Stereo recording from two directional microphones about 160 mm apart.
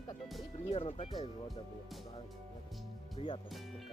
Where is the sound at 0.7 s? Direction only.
35° left (ahead or behind).